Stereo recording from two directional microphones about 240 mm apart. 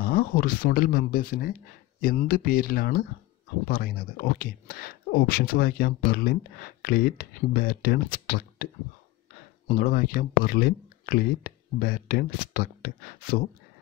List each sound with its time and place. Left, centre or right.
0.0 s speech: left
9.7 s speech: left